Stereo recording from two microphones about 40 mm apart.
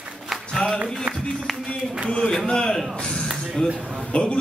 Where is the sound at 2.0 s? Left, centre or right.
Centre.